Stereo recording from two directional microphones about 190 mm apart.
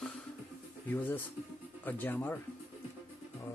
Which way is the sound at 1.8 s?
10° left (ahead or behind).